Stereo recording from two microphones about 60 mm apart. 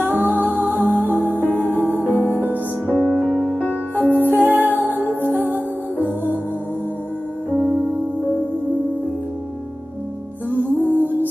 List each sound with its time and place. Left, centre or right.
0.2 s music: right
1.3 s music: left
1.7 s music: right
2.0 s music: left
2.9 s music: left
4.2 s music: right
11.0 s music: right